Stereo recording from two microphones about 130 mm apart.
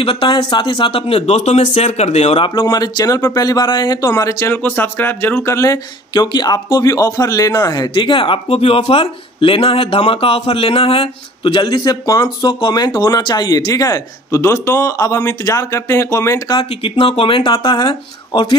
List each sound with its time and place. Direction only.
0.0 s speech: 40° left (ahead or behind)
2.6 s a man's voice: 30° left (ahead or behind)
16.8 s speech: 50° left (ahead or behind)